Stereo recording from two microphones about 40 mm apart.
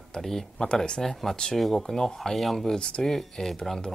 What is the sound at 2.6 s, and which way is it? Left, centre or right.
Speech, centre.